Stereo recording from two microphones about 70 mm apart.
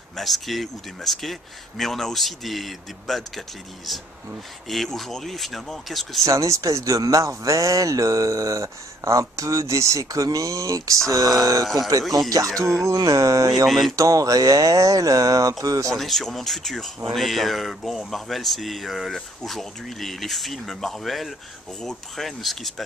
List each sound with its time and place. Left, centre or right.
0.1 s speech: centre
6.2 s speech: right
12.5 s speech: right
12.9 s speech: right
13.7 s speech: centre
13.9 s speech: right
15.9 s speech: centre